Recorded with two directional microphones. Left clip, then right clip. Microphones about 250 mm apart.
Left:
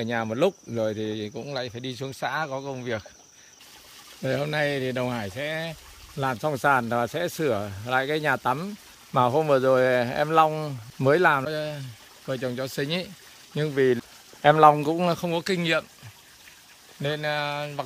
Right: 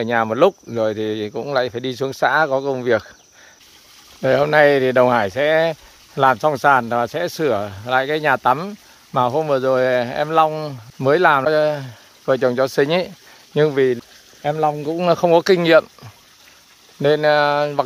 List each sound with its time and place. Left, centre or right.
0.0 s speech: centre
4.2 s speech: centre
14.4 s speech: centre
15.0 s speech: centre
17.0 s speech: centre